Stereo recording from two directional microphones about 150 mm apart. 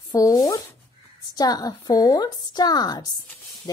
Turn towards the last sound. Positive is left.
turn(degrees=25)  # may be behind; listen again after turning